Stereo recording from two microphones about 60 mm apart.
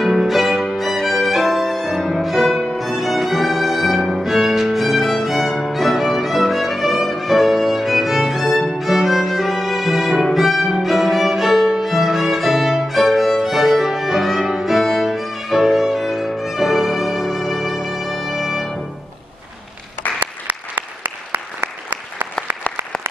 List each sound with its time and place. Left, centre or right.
0.0 s music: centre
20.2 s applause: right